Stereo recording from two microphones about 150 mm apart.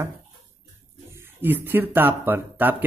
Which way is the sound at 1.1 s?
15° right (ahead or behind).